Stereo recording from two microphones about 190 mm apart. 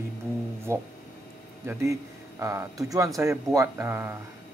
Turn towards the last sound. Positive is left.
turn(degrees=-10)  # may be behind; listen again after turning